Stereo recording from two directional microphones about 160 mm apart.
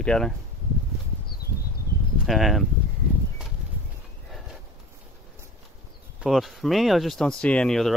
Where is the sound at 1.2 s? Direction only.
75° left (ahead or behind).